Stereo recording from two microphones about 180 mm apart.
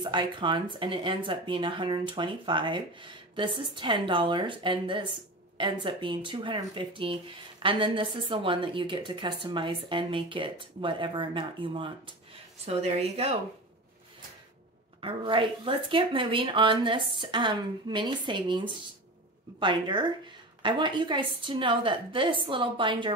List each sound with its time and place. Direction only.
0.0 s a woman's voice: 25° right (ahead or behind)
15.0 s speech: 30° right (ahead or behind)